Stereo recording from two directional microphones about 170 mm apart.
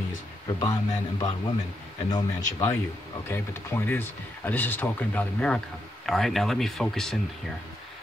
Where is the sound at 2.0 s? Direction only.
20° left (ahead or behind).